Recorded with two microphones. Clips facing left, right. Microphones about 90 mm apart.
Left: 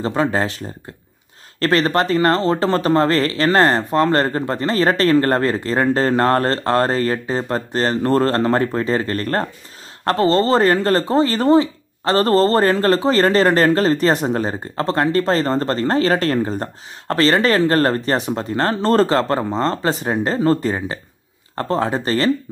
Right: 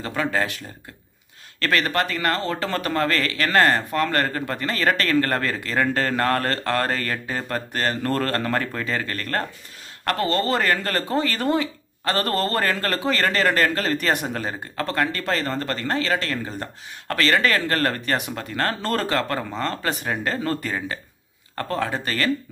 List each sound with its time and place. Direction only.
0.0 s speech: 30° left (ahead or behind)